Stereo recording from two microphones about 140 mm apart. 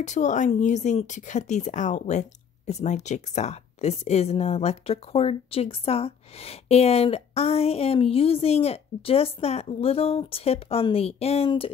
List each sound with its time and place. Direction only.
0.0 s a woman's voice: 60° left (ahead or behind); by 11.7 s 40° left (ahead or behind)